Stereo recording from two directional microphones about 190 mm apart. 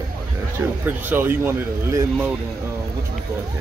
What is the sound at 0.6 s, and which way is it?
Speech, 15° right (ahead or behind).